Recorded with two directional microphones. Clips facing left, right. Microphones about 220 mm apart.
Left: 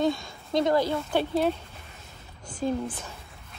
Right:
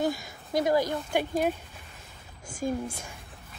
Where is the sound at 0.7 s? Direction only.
15° right (ahead or behind).